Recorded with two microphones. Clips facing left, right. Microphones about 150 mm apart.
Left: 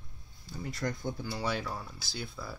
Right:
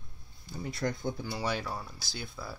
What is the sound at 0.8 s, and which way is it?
Speech, 20° right (ahead or behind).